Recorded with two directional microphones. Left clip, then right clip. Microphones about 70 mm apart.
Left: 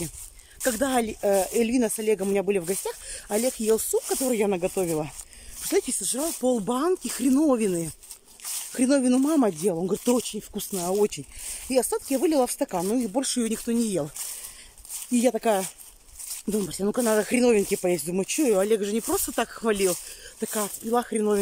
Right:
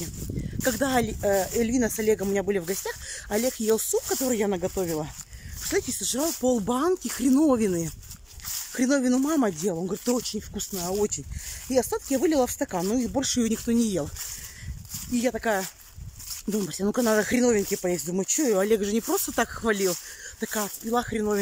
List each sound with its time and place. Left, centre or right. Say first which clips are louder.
0.6 s speech: even; centre
1.3 s speech: left 2 dB; left
1.6 s speech: left 1 dB; centre
4.0 s speech: left 1 dB; left
4.7 s speech: left 2 dB; left
6.4 s speech: left 1 dB; centre
9.9 s speech: left 3 dB; left
11.7 s speech: left 1 dB; centre
13.8 s speech: left 1 dB; centre
15.0 s speech: left 3 dB; left
16.7 s speech: even; centre
17.3 s speech: left 2 dB; left
18.6 s speech: even; centre
20.9 s speech: left 2 dB; left